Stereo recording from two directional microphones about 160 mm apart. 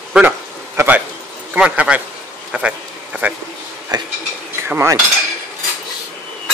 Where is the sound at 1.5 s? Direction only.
10° right (ahead or behind).